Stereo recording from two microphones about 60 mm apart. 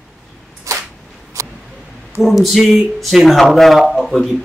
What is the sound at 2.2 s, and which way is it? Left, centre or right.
A man's voice, centre.